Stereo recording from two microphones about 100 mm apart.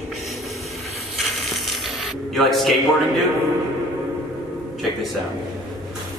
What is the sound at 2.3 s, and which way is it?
Speech, centre (ahead or behind).